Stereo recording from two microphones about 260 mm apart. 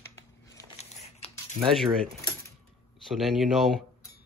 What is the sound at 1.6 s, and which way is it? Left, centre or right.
Speech, centre.